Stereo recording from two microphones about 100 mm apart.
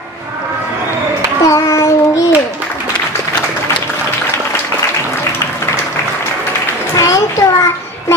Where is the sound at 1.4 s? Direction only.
30° left (ahead or behind).